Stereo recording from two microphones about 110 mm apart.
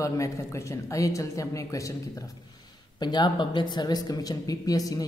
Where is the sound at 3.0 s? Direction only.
40° left (ahead or behind).